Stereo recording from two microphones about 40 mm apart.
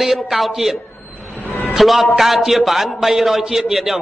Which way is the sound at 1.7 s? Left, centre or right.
Centre.